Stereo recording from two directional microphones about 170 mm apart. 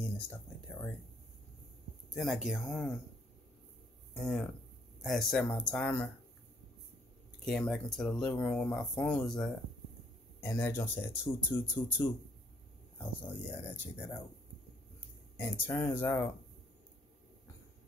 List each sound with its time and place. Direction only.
0.0 s speech: 10° left (ahead or behind)
2.1 s speech: 5° right (ahead or behind)
4.1 s speech: 5° left (ahead or behind)
7.4 s speech: 5° left (ahead or behind)
10.4 s speech: 15° left (ahead or behind)
12.9 s speech: 10° left (ahead or behind)
15.3 s speech: 10° left (ahead or behind)